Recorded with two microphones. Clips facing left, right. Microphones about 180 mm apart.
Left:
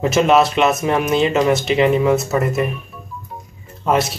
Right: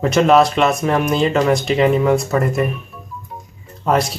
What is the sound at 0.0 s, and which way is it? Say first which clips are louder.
Speech: right 1 dB; 5° left (ahead or behind).